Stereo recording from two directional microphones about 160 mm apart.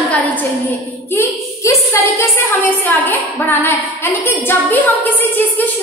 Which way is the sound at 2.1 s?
15° left (ahead or behind).